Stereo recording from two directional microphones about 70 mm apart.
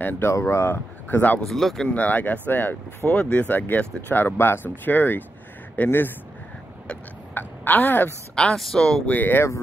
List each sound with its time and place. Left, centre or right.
0.3 s speech: left
1.0 s speech: left
1.4 s speech: centre
1.9 s speech: left
3.2 s speech: centre
7.3 s a sound: left
8.4 s speech: centre
9.0 s speech: left